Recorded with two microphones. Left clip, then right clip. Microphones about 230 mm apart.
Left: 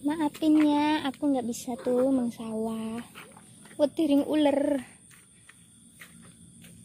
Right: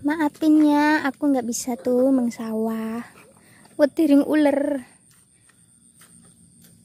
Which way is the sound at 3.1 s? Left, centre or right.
Centre.